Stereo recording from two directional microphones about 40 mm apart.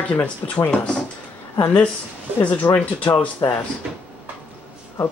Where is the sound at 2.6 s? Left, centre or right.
Left.